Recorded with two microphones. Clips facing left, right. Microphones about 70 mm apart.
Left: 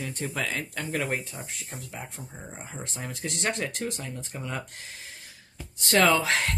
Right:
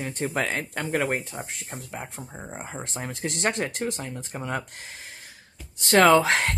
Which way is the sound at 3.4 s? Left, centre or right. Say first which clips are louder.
Right 3 dB; right.